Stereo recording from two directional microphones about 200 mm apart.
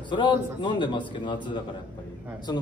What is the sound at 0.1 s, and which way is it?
A man's voice, 25° left (ahead or behind).